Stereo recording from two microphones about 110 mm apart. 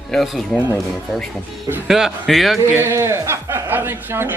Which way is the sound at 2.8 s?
25° right (ahead or behind).